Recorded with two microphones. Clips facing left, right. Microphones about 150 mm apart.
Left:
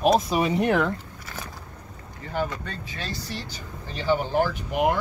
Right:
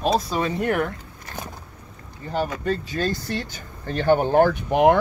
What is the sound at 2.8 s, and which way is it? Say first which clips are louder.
Speech: right 9 dB; 50° right (ahead or behind).